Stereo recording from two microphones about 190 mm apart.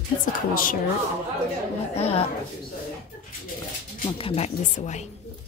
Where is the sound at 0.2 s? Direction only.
45° left (ahead or behind).